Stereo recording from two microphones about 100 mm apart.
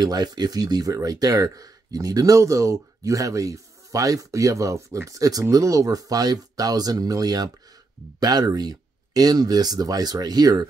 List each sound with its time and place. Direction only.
0.0 s speech: 40° right (ahead or behind)